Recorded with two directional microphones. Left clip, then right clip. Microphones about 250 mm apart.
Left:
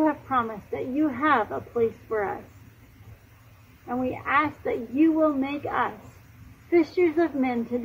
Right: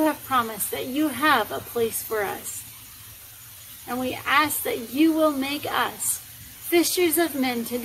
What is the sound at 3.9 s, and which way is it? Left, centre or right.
A woman's voice, centre.